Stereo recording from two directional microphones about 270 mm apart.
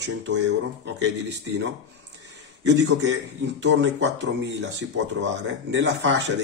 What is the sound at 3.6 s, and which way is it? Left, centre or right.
Speech, right.